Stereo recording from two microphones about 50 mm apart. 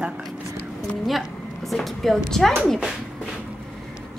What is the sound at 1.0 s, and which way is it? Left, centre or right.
Speech, centre.